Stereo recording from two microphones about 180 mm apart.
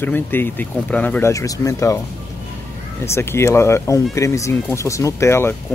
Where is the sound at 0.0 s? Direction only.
10° left (ahead or behind).